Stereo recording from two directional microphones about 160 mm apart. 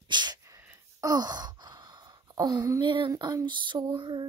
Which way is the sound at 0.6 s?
20° right (ahead or behind).